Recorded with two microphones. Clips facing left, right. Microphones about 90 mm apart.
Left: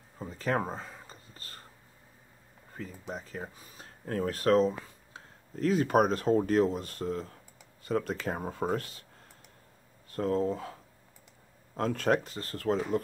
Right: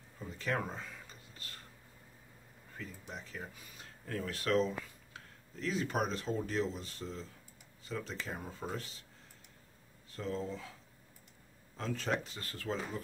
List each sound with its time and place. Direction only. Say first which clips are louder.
0.2 s a sound: left 6 dB; 40° left (ahead or behind)
2.8 s speech: left 7 dB; 40° left (ahead or behind)
10.1 s speech: left 10 dB; 50° left (ahead or behind)